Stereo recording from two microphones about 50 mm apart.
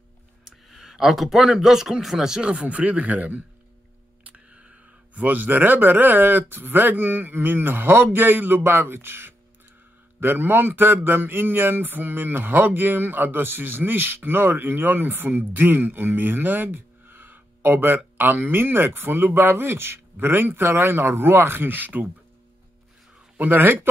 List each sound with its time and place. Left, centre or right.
0.5 s speech: centre
2.6 s a man's voice: right
4.6 s speech: right
23.3 s speech: right